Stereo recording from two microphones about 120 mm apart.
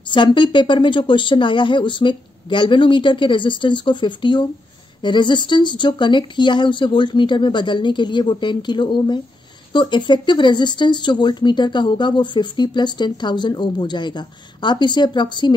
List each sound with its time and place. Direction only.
0.1 s speech: 40° left (ahead or behind)